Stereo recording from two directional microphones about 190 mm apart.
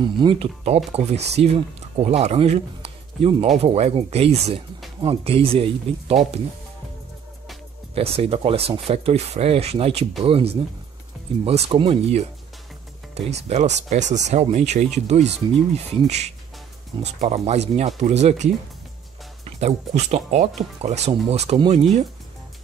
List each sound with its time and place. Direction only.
0.0 s speech: 25° right (ahead or behind)
7.9 s speech: 30° right (ahead or behind)